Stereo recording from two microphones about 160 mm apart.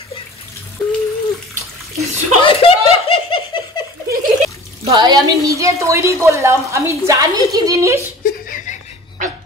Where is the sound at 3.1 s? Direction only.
35° left (ahead or behind).